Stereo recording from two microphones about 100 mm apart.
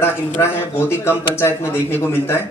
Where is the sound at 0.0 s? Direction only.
25° left (ahead or behind).